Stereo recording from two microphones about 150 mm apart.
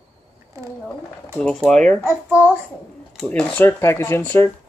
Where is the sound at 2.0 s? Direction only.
10° right (ahead or behind).